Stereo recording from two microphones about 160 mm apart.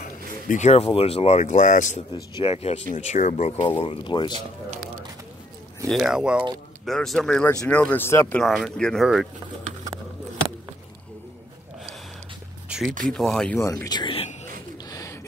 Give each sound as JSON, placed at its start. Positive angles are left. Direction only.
{"t": 0.5, "sound": "speech", "side_deg": 45}
{"t": 2.1, "sound": "speech", "side_deg": 30}
{"t": 3.6, "sound": "speech", "side_deg": 35}
{"t": 5.9, "sound": "speech", "side_deg": 0}
{"t": 8.4, "sound": "speech", "side_deg": 0}
{"t": 12.6, "sound": "a sound", "side_deg": -5}
{"t": 13.1, "sound": "speech", "side_deg": 5}
{"t": 13.8, "sound": "speech", "side_deg": 30}
{"t": 14.9, "sound": "pigeon", "side_deg": 20}